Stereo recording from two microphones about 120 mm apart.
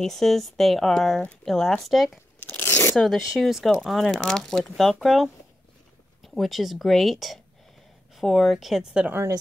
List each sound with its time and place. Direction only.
0.0 s speech: centre (ahead or behind)
2.4 s tearing: 20° left (ahead or behind)
3.0 s speech: centre (ahead or behind)
9.1 s speech: 25° right (ahead or behind)